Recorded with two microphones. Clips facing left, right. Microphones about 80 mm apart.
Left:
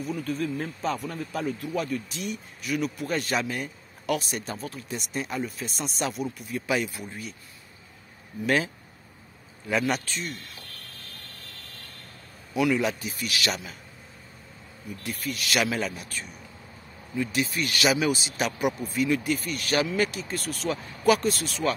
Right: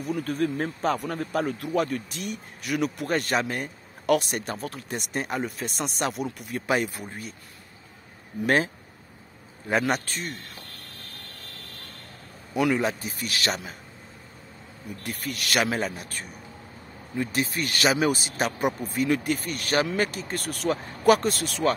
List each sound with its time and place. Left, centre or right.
0.0 s speech: right
6.7 s speech: right
8.4 s speech: right
9.7 s speech: right
12.5 s speech: right
15.0 s speech: right